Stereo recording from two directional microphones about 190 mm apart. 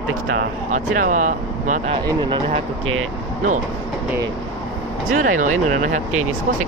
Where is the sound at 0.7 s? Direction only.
45° right (ahead or behind).